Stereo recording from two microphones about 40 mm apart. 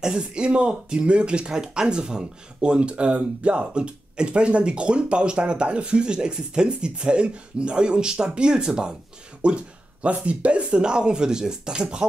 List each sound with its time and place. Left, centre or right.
0.0 s speech: right